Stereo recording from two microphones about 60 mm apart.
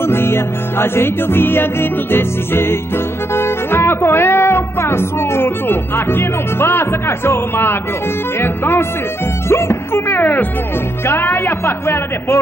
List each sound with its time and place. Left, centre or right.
0.0 s music: left